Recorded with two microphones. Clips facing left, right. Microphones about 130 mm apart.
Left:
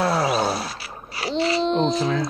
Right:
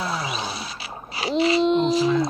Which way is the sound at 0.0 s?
75° left (ahead or behind).